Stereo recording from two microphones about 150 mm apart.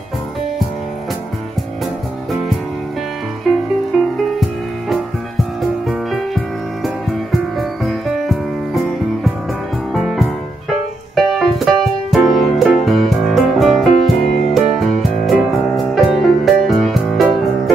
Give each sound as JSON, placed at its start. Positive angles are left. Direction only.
{"t": 3.5, "sound": "music", "side_deg": 0}
{"t": 9.9, "sound": "music", "side_deg": 0}
{"t": 14.0, "sound": "music", "side_deg": 45}
{"t": 14.5, "sound": "music", "side_deg": 0}